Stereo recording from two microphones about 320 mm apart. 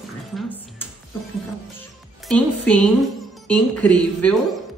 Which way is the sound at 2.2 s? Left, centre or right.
Centre.